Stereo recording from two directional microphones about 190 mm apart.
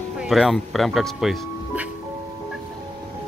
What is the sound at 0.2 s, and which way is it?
Speech, centre (ahead or behind).